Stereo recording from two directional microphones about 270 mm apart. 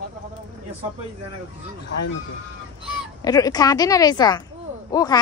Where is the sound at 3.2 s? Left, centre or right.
Centre.